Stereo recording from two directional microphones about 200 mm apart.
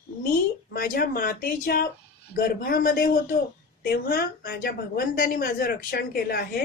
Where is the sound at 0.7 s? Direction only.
45° left (ahead or behind).